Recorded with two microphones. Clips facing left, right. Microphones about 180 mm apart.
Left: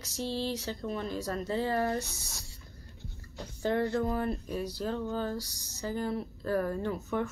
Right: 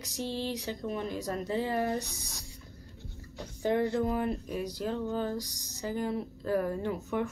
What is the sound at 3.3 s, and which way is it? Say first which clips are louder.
Speech: right 1 dB; 15° right (ahead or behind).